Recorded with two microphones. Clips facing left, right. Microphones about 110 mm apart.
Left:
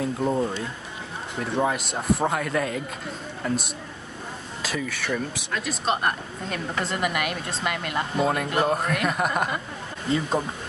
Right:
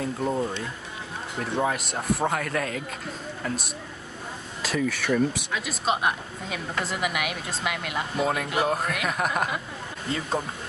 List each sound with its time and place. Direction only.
0.0 s speech: 5° left (ahead or behind)